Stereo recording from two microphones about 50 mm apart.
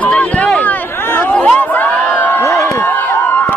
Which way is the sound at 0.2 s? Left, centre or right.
Left.